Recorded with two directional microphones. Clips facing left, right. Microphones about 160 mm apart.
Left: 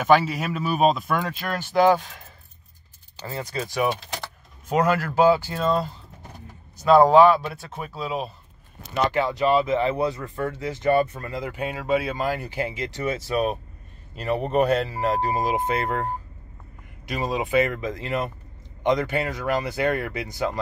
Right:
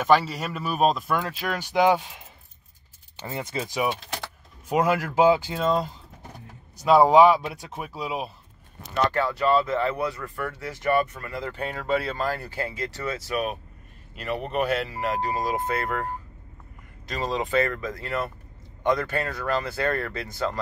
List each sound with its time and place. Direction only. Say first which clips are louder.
0.0 s speech: left 2 dB; 5° left (ahead or behind); by 8.3 s 10° right (ahead or behind)
8.9 s speech: left 1 dB; 15° left (ahead or behind)
11.4 s speech: left 1 dB; 15° left (ahead or behind)
17.0 s speech: left 1 dB; 10° left (ahead or behind)